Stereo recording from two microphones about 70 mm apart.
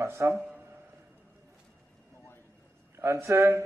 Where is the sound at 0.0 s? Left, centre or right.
Right.